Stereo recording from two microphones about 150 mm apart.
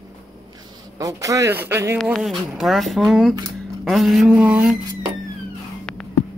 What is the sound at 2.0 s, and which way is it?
Speech, centre (ahead or behind).